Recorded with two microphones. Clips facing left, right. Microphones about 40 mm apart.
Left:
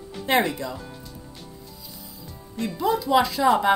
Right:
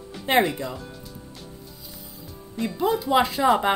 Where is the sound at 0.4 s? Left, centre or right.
Centre.